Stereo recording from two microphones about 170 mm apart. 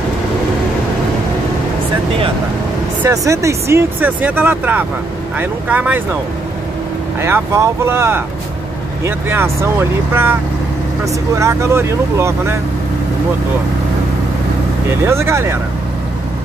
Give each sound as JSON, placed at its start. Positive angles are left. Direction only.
{"t": 3.0, "sound": "speech", "side_deg": -15}
{"t": 7.2, "sound": "speech", "side_deg": -15}
{"t": 11.3, "sound": "speech", "side_deg": -15}
{"t": 15.0, "sound": "speech", "side_deg": -15}